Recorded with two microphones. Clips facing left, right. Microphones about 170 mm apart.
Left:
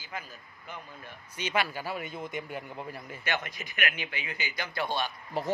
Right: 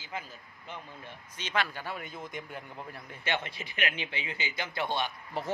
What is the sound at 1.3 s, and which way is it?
Speech, 10° left (ahead or behind).